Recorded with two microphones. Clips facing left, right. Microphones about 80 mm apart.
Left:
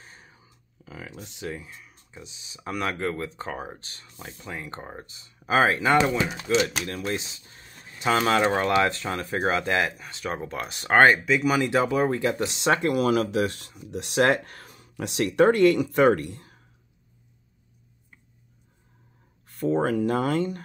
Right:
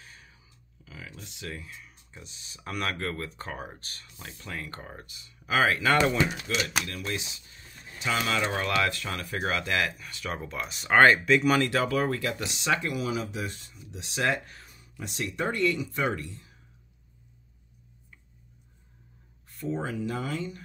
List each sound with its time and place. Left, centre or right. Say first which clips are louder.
0.0 s a sound: left 2 dB; left
1.1 s speech: left 5 dB; left
1.8 s speech: left 3 dB; centre
5.9 s speech: left 2 dB; centre
6.3 s speech: left 6 dB; left
8.7 s speech: left 5 dB; left
11.2 s speech: even; centre
11.7 s speech: left 4 dB; left
12.9 s speech: left 9 dB; left
19.4 s speech: left 8 dB; left